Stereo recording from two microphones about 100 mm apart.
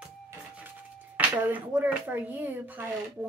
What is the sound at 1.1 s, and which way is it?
Speech, 15° right (ahead or behind).